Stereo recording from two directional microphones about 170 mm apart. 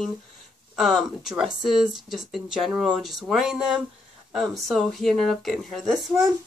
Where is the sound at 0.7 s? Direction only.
Centre (ahead or behind).